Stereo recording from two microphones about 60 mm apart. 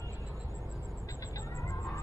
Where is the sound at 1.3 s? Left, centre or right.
Left.